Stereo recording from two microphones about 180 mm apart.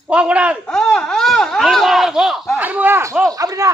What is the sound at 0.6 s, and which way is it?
Speech, 5° left (ahead or behind).